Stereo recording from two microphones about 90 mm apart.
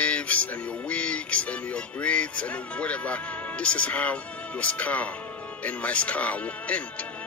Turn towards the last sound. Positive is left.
turn(degrees=15)  # may be behind; listen again after turning